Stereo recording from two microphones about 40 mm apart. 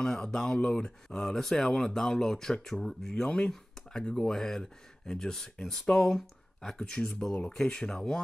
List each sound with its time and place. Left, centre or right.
0.0 s speech: centre
3.3 s speech: centre
7.9 s speech: centre